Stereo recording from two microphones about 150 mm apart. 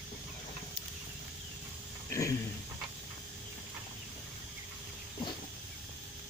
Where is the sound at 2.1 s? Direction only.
20° left (ahead or behind).